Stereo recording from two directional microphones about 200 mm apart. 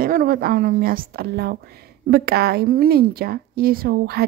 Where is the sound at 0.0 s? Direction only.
45° right (ahead or behind).